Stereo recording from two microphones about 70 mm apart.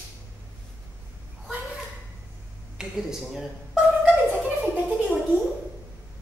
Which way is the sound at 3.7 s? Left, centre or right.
Centre.